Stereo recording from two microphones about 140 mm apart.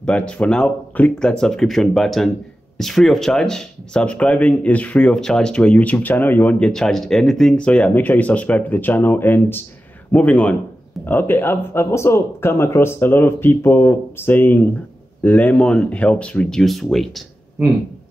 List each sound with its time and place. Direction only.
0.0 s speech: 10° left (ahead or behind)